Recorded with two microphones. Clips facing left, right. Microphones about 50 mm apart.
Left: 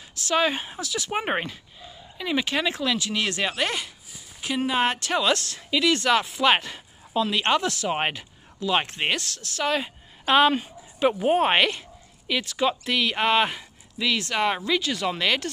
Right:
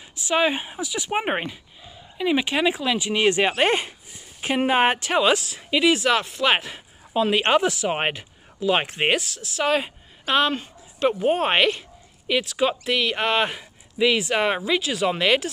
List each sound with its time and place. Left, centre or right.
0.1 s speech: centre
5.9 s speech: centre
7.2 s speech: centre
10.2 s speech: centre
13.9 s speech: centre